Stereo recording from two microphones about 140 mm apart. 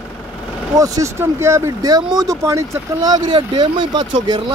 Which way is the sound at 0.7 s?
25° right (ahead or behind).